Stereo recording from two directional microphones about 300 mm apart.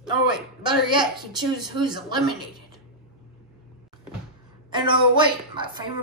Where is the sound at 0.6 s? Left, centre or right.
Centre.